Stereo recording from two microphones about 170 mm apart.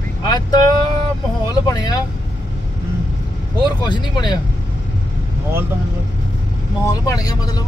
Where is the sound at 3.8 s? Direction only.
25° left (ahead or behind).